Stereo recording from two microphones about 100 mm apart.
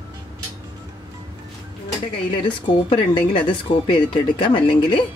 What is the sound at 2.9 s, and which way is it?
Speech, 55° left (ahead or behind).